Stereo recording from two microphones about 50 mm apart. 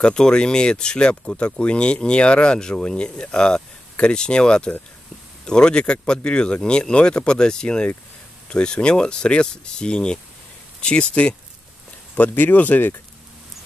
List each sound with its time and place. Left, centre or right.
0.0 s speech: centre
12.2 s speech: left